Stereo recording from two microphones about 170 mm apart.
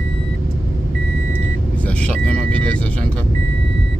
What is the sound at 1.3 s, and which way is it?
Vehicle, 10° left (ahead or behind).